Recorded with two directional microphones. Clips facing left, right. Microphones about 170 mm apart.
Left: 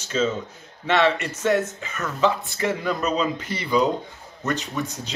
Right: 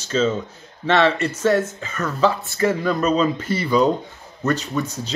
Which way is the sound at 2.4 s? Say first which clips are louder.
Right 5 dB; 15° left (ahead or behind).